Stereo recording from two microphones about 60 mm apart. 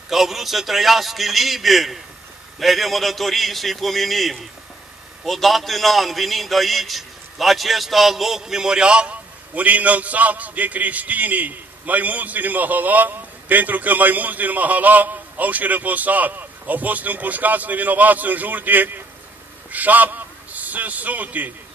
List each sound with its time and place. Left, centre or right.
0.1 s a man's voice: centre; by 21.5 s right